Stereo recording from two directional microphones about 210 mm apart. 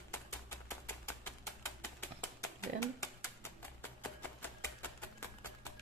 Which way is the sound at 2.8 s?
15° left (ahead or behind).